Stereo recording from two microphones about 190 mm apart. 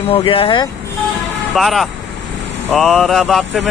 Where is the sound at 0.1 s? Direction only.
30° left (ahead or behind).